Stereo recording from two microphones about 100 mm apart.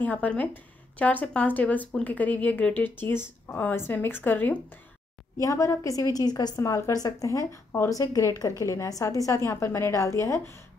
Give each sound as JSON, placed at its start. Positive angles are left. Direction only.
{"t": 0.0, "sound": "speech", "side_deg": 15}
{"t": 5.4, "sound": "a woman's voice", "side_deg": 30}